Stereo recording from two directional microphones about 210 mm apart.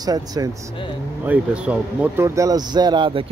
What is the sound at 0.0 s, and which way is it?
Speech, 20° right (ahead or behind).